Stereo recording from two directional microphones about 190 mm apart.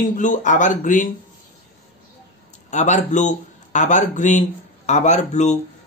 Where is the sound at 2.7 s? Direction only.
40° left (ahead or behind).